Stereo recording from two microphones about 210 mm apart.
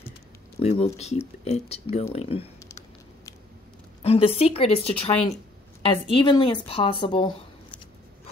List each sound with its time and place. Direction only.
0.6 s speech: 30° left (ahead or behind)
4.0 s speech: 30° left (ahead or behind)